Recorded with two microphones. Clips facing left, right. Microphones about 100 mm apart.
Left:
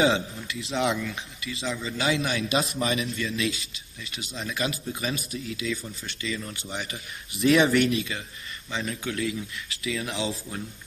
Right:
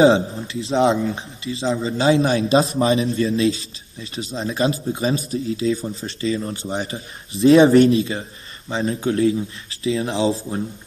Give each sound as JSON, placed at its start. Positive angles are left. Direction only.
{"t": 0.0, "sound": "speech", "side_deg": -35}